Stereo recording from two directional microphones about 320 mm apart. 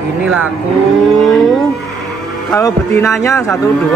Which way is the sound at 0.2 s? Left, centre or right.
Centre.